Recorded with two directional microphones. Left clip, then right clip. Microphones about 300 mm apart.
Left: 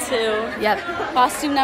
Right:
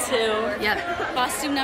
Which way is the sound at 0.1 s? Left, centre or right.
Centre.